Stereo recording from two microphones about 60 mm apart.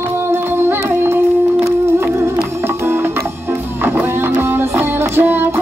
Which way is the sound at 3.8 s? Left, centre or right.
Right.